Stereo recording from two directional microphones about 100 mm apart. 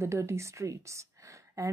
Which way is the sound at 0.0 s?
30° right (ahead or behind).